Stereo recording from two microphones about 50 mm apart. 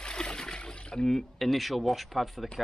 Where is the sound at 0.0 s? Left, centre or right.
Centre.